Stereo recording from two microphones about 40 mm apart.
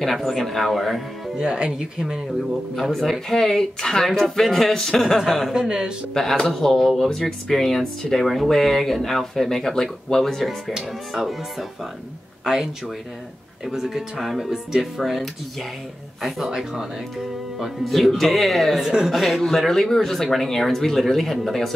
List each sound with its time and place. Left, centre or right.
0.0 s speech: centre
1.4 s speech: centre
2.7 s speech: centre
5.5 s speech: centre
6.2 s speech: centre
13.7 s speech: centre
18.8 s speech: centre
19.4 s speech: centre